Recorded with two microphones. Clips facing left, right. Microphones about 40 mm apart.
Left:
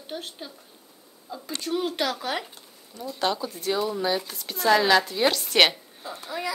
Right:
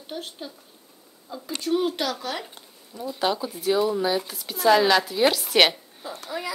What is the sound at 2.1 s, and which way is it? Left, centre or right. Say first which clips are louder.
Speech: left 1 dB; centre.